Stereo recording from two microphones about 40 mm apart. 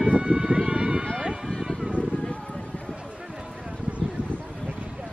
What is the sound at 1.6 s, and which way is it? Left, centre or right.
Music, centre.